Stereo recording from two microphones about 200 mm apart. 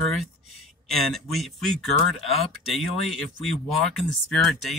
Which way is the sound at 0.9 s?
Centre (ahead or behind).